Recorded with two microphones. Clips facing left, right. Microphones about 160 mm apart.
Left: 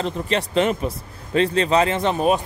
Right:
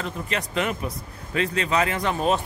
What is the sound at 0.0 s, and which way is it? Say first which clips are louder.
Speech: left 6 dB; 30° left (ahead or behind).